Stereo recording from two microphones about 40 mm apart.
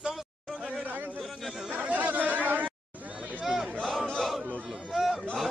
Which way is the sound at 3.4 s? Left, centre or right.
Centre.